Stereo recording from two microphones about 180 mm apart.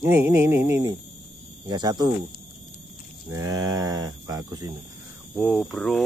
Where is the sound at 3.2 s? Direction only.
20° right (ahead or behind).